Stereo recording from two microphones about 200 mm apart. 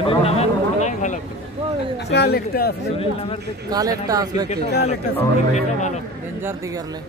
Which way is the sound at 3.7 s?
20° right (ahead or behind).